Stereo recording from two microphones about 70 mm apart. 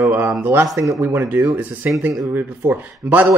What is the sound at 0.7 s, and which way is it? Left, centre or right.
Speech, right.